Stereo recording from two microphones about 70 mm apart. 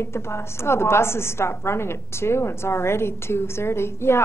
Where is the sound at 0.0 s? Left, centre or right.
Left.